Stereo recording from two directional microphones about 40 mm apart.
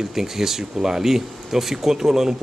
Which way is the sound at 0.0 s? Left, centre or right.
Centre.